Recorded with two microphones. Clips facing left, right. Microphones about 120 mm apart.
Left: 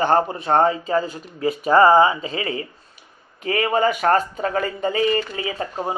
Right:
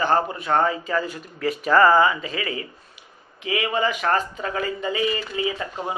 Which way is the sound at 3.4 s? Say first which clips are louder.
Left 4 dB; 45° left (ahead or behind).